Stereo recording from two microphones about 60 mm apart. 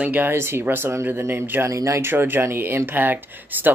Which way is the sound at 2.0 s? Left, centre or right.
Right.